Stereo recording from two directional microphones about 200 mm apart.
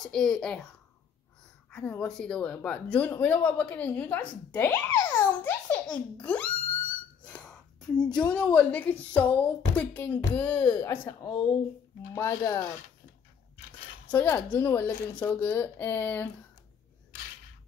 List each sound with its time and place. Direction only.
0.0 s a child's voice: 5° left (ahead or behind)
1.7 s speech: 5° left (ahead or behind)
7.2 s a sound: 5° left (ahead or behind)
8.0 s a child's voice: 5° left (ahead or behind)
14.1 s speech: 10° left (ahead or behind)